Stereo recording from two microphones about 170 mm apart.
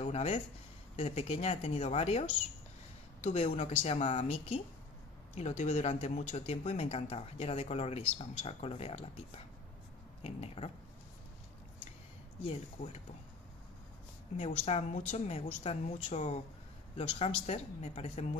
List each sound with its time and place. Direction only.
0.0 s speech: 35° left (ahead or behind)
10.2 s speech: 35° left (ahead or behind)
14.3 s speech: 40° left (ahead or behind)